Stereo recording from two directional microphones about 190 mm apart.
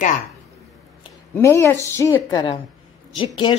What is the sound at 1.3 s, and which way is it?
A woman's voice, 15° left (ahead or behind).